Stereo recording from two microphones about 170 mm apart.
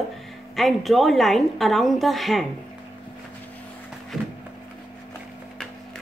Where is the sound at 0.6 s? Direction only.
Centre (ahead or behind).